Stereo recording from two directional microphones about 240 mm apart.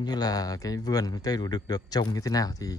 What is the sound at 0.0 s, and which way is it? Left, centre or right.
A man's voice, centre.